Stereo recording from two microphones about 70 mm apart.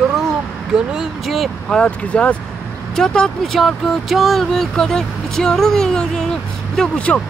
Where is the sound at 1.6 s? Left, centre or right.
Centre.